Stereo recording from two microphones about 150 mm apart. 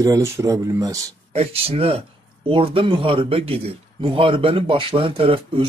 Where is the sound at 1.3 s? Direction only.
45° right (ahead or behind).